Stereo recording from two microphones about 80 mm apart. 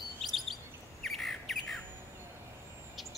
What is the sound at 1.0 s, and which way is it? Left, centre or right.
Squawk, centre.